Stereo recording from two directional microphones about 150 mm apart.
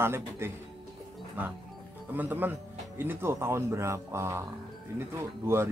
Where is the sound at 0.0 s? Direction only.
15° right (ahead or behind).